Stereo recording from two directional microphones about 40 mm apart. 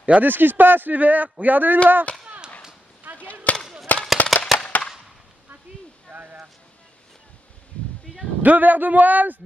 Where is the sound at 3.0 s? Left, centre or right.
Right.